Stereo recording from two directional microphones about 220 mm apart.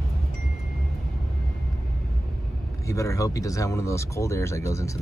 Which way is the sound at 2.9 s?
15° left (ahead or behind).